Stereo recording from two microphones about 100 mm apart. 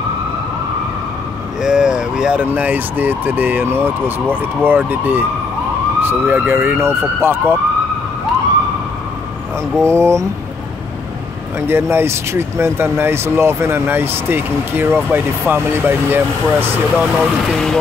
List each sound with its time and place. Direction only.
1.6 s speech: 5° right (ahead or behind); by 7.5 s 25° right (ahead or behind)
9.8 s speech: 30° right (ahead or behind)
11.6 s speech: 25° right (ahead or behind)
17.1 s speech: 5° left (ahead or behind)